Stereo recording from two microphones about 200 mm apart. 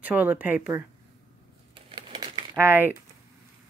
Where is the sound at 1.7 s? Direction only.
25° right (ahead or behind).